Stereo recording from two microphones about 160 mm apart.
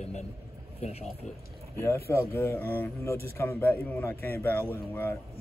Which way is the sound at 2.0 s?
15° left (ahead or behind).